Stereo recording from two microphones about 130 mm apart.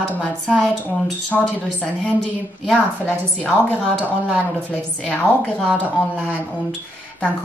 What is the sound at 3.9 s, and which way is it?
Speech, 15° right (ahead or behind).